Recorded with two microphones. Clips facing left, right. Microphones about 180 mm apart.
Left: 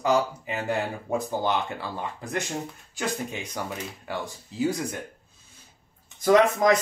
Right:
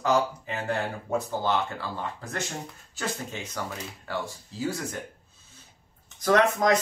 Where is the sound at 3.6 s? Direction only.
15° left (ahead or behind).